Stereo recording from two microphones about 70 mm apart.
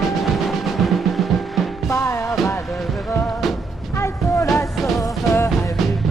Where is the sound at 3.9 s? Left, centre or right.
Left.